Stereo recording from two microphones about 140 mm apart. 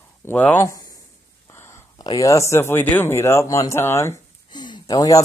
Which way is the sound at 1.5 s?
20° left (ahead or behind).